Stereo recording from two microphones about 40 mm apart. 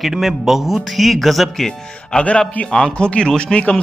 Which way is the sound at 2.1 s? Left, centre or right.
Left.